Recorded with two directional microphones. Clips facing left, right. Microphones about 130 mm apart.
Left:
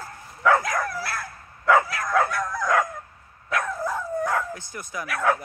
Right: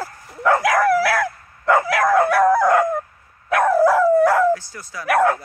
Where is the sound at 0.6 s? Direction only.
80° right.